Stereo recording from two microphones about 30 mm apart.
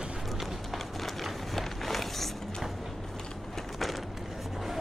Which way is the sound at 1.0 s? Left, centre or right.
Centre.